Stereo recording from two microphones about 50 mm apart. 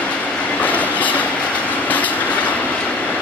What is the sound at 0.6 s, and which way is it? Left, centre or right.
Train, left.